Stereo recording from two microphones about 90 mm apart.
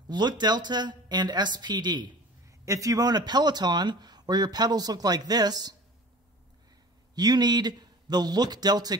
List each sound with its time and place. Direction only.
0.1 s speech: 55° right (ahead or behind)
2.4 s speech: 35° right (ahead or behind)
7.2 s speech: 50° right (ahead or behind)